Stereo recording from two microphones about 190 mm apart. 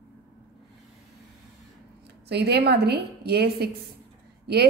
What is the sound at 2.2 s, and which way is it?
A woman's voice, 60° right (ahead or behind).